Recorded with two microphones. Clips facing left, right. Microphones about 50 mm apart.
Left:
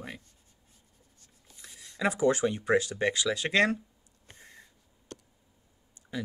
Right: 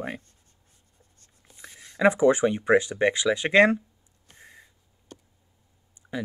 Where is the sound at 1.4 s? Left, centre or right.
Right.